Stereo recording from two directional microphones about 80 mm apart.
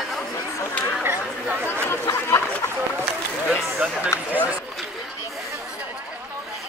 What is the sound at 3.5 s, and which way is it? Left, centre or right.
Speech, centre.